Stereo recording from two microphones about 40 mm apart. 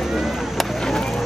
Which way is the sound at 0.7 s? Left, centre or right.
Centre.